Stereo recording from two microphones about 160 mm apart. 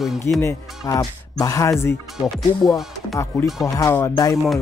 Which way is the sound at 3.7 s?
20° left (ahead or behind).